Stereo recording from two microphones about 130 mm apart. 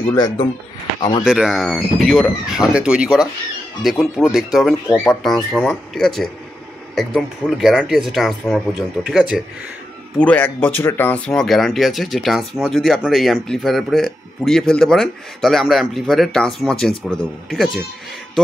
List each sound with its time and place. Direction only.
0.1 s speech: 35° left (ahead or behind)
1.2 s speech: 5° right (ahead or behind)
10.1 s speech: 10° left (ahead or behind)